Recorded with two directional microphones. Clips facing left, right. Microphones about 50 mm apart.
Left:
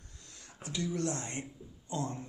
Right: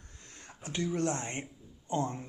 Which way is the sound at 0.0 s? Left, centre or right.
Right.